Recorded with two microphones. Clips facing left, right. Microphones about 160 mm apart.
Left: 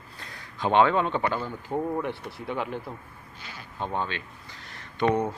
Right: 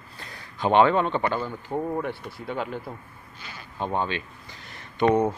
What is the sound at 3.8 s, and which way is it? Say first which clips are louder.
Speech: right 3 dB; 15° right (ahead or behind).